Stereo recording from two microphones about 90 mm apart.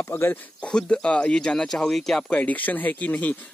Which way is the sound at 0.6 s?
10° left (ahead or behind).